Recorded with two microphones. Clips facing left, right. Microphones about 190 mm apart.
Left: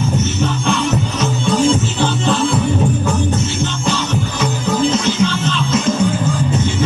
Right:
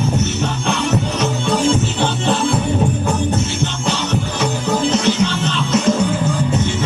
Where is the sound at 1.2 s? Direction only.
60° right (ahead or behind).